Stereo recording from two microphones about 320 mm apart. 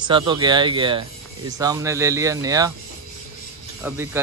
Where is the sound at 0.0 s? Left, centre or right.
Centre.